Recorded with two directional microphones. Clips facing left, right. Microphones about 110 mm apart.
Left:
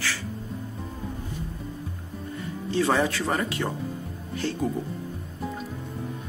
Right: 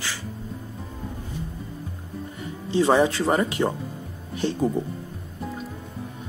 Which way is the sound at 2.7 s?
20° right (ahead or behind).